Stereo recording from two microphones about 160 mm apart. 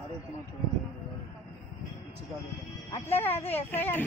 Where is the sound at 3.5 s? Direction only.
10° left (ahead or behind).